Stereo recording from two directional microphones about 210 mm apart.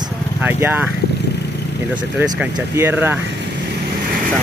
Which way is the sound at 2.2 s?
10° right (ahead or behind).